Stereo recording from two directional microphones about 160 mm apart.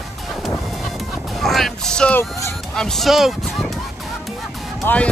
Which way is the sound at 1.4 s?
Centre (ahead or behind).